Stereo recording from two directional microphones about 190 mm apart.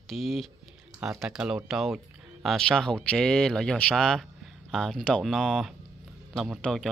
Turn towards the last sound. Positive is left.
turn(degrees=0)  # may be behind; listen again after turning